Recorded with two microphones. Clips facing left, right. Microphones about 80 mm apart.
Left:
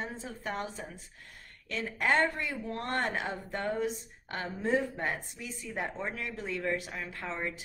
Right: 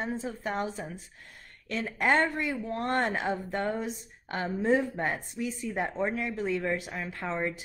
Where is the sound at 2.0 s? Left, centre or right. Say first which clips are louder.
Right 2 dB; right.